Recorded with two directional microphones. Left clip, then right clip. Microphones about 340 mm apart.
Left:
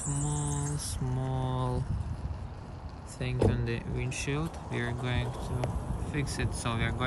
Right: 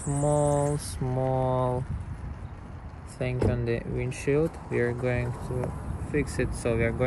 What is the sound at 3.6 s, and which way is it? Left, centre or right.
Speech, centre.